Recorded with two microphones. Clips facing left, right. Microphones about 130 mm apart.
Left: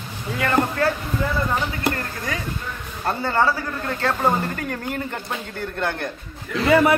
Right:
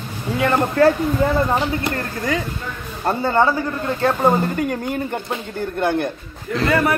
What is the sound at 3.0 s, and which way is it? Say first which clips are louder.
Speech: right 3 dB; 20° right (ahead or behind).